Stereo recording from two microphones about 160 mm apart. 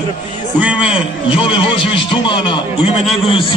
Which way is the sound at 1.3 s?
30° left (ahead or behind).